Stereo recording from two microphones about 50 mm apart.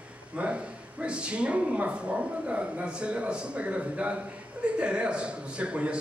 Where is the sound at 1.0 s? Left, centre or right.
Right.